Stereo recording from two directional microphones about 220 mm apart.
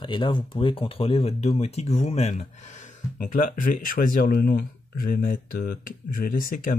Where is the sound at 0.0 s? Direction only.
20° left (ahead or behind).